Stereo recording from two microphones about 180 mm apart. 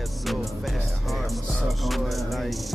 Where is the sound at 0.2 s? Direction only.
Centre (ahead or behind).